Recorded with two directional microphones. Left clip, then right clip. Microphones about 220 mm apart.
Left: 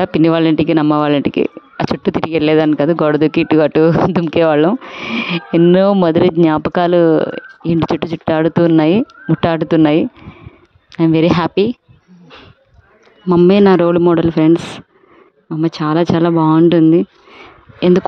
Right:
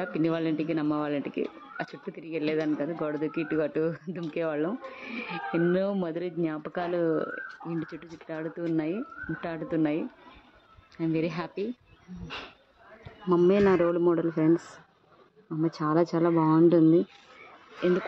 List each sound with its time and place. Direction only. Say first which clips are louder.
0.0 s speech: left 16 dB; 45° left (ahead or behind)
13.5 s speech: left 13 dB; 55° left (ahead or behind)
15.6 s speech: left 11 dB; 45° left (ahead or behind)
17.7 s speech: left 14 dB; 55° left (ahead or behind)